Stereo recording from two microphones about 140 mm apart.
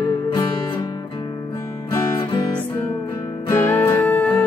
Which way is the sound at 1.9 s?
30° left (ahead or behind).